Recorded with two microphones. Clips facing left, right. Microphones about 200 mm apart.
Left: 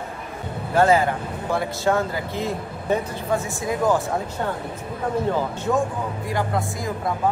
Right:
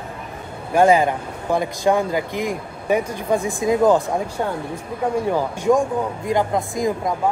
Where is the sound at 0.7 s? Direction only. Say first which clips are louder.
Right 3 dB; 15° right (ahead or behind).